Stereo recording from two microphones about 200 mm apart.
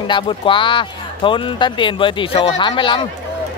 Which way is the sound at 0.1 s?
25° left (ahead or behind).